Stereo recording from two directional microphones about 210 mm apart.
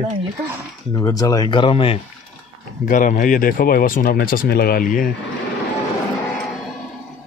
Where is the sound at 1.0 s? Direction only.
15° left (ahead or behind).